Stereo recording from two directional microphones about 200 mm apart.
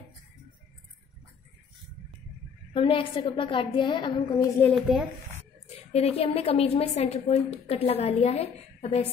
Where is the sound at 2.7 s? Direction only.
25° left (ahead or behind).